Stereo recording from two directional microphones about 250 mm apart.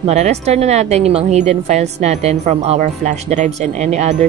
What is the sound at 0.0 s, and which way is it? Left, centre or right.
A woman's voice, right.